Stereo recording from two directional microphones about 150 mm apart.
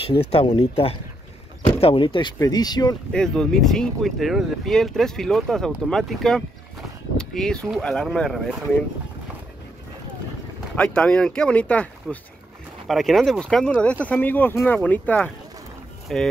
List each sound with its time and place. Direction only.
0.3 s speech: 40° left (ahead or behind)
3.1 s speech: 5° left (ahead or behind)
10.8 s speech: 5° left (ahead or behind)